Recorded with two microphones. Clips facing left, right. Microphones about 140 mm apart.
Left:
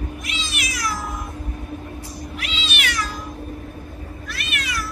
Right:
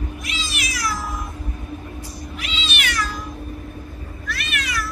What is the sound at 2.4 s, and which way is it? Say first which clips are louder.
Cat: right 1 dB; centre (ahead or behind).